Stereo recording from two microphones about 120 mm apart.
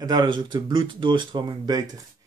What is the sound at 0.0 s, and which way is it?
Speech, 35° right (ahead or behind).